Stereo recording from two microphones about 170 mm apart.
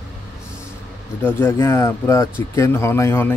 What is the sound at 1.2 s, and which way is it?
Speech, 15° left (ahead or behind).